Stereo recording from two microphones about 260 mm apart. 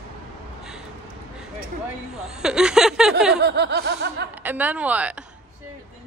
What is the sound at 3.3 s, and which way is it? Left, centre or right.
Snicker, right.